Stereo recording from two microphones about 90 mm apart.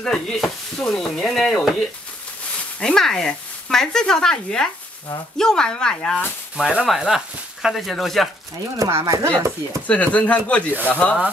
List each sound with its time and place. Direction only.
0.0 s stir: 5° left (ahead or behind)
2.8 s speech: 5° left (ahead or behind)
6.5 s stir: 10° right (ahead or behind)
8.7 s speech: 40° right (ahead or behind)
9.8 s speech: 15° left (ahead or behind)